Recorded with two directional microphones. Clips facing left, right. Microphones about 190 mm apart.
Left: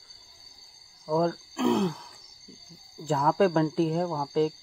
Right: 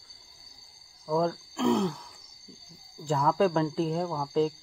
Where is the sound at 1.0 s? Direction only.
Centre (ahead or behind).